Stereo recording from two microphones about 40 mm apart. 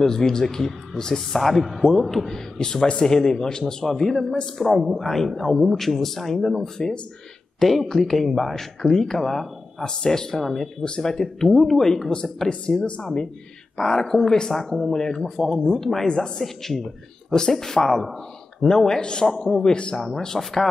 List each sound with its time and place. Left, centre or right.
0.0 s speech: centre
9.8 s speech: centre
11.4 s speech: centre
19.7 s speech: left
20.0 s speech: centre